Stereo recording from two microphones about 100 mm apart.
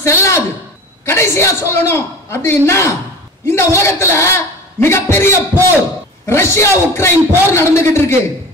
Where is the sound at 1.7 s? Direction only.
25° left (ahead or behind).